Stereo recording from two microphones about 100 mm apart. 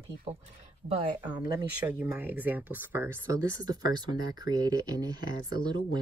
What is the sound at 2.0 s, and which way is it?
Speech, 20° right (ahead or behind).